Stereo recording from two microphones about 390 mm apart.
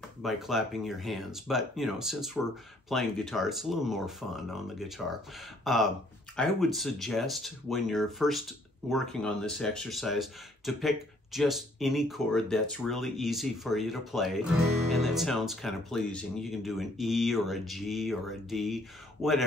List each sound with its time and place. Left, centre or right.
0.2 s speech: centre